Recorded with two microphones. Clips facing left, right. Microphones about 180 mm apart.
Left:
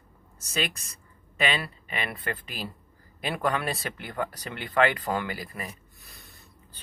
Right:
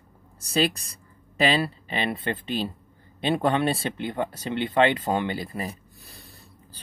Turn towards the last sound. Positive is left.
turn(degrees=-35)  # may be behind; listen again after turning